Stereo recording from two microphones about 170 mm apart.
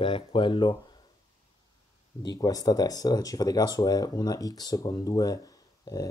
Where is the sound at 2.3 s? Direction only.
20° left (ahead or behind).